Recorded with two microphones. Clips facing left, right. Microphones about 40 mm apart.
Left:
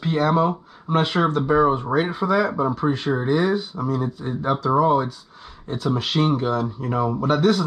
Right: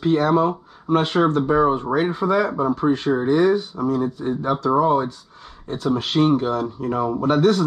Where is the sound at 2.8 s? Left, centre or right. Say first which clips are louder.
Right 3 dB; left.